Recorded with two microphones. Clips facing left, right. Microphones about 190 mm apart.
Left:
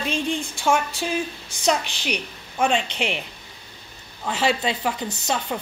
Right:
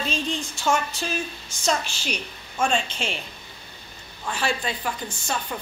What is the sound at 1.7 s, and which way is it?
A woman's voice, 15° left (ahead or behind).